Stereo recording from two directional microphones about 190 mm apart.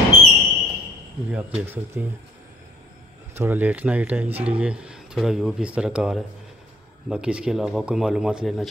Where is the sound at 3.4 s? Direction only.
10° right (ahead or behind).